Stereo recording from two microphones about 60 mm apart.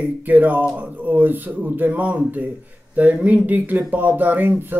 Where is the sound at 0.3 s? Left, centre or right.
Right.